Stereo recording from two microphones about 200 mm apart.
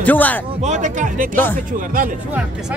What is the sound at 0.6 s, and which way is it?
Speech, 35° right (ahead or behind).